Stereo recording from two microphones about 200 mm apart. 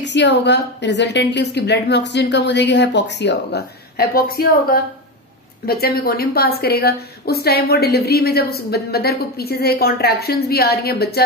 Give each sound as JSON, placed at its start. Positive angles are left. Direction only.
{"t": 0.0, "sound": "a woman's voice", "side_deg": 60}